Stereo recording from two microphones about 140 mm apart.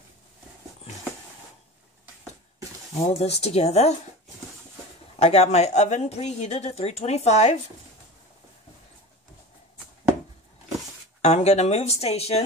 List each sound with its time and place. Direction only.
3.1 s a woman's voice: 50° left (ahead or behind)
5.2 s a woman's voice: 50° left (ahead or behind)
11.1 s a woman's voice: 50° left (ahead or behind)